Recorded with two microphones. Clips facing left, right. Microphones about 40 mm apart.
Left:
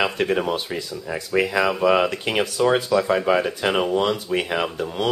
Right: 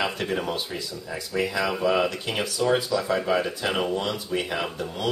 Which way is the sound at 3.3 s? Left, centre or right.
Left.